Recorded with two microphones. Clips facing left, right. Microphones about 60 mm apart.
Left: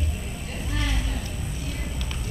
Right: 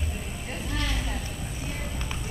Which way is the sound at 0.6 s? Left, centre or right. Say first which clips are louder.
Left 1 dB; centre.